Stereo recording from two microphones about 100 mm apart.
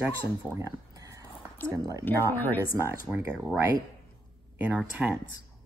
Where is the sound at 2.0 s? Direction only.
20° left (ahead or behind).